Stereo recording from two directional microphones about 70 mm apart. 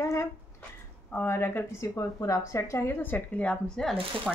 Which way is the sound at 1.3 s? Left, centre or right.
Left.